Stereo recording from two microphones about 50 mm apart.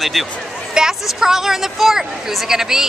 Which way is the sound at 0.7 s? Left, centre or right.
Centre.